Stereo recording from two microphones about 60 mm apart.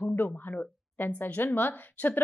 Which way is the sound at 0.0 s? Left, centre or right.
Left.